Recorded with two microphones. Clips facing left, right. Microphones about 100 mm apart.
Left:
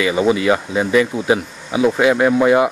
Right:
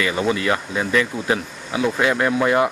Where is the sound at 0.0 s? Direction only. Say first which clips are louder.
Left 5 dB; 10° left (ahead or behind).